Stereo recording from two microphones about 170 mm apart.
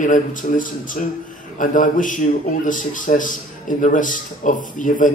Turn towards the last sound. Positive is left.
turn(degrees=50)  # may be behind; listen again after turning